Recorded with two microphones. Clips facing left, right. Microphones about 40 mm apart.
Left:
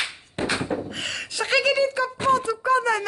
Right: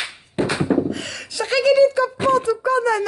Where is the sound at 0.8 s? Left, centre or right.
Left.